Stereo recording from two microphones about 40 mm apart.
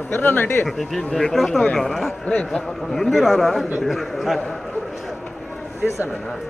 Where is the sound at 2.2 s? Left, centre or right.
Centre.